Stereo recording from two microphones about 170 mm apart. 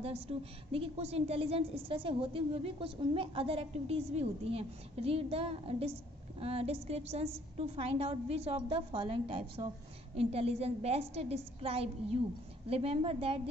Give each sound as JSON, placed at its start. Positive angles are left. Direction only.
{"t": 0.0, "sound": "a woman's voice", "side_deg": -35}